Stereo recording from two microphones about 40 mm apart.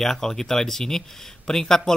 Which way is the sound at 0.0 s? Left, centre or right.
Centre.